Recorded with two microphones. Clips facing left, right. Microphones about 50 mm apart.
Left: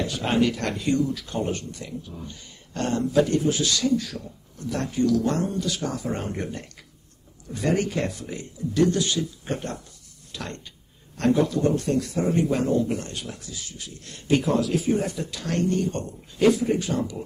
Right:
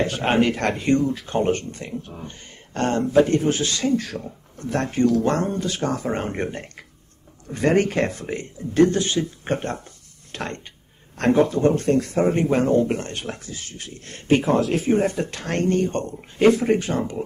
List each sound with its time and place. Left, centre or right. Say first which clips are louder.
0.0 s speech: right 3 dB; right